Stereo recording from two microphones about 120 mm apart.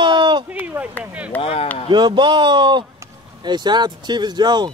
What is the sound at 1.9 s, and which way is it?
Speech, 40° right (ahead or behind).